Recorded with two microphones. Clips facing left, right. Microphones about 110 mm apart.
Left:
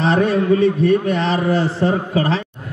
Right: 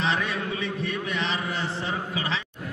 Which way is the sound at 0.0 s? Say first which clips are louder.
Left 11 dB; 45° left (ahead or behind).